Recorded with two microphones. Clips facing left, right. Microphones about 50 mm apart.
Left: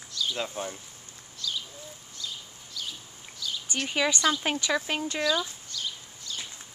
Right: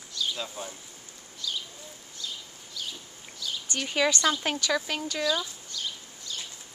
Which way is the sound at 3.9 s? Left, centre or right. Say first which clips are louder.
Right 1 dB; centre.